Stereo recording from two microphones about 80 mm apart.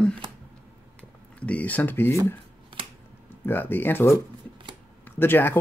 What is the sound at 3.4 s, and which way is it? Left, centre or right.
Speech, left.